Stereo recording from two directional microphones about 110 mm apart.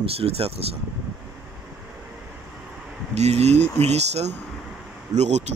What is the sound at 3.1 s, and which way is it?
Cattle, 80° right.